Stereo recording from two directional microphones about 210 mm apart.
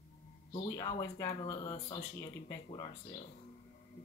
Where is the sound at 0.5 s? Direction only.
15° left (ahead or behind).